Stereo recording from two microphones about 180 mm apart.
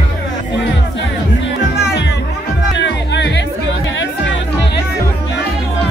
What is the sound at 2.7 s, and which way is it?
Music, 75° left (ahead or behind).